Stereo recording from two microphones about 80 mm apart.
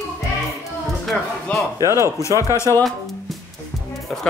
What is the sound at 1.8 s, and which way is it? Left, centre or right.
Speech, right.